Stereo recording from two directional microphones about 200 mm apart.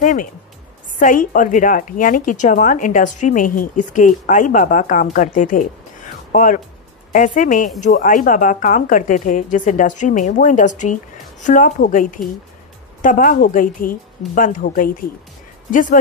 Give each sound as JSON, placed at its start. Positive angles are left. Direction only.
{"t": 0.0, "sound": "a woman's voice", "side_deg": 40}